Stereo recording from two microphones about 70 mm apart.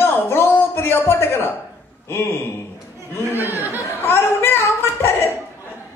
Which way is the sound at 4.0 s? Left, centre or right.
Left.